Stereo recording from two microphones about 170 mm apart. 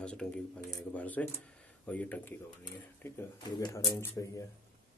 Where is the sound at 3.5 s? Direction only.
25° left (ahead or behind).